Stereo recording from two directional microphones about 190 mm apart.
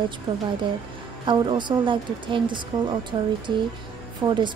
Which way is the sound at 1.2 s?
25° right (ahead or behind).